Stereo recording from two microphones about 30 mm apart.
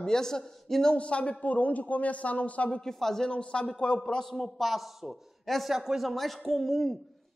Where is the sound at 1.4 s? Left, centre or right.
Left.